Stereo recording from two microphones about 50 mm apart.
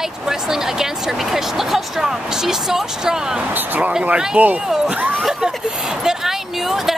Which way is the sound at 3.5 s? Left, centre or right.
Right.